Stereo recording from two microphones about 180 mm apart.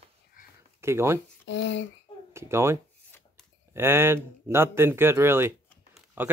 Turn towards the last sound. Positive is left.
turn(degrees=-10)  # may be behind; listen again after turning